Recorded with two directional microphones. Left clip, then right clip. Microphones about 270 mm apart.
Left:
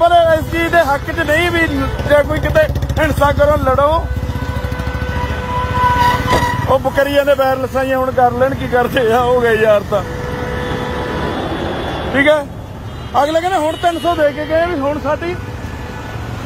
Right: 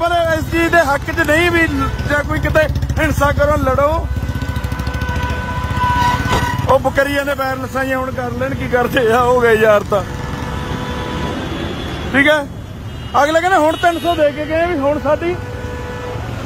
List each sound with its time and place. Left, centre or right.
0.0 s speech: centre
6.7 s speech: centre
12.1 s speech: centre